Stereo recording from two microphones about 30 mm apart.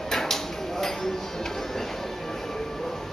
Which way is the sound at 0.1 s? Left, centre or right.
Centre.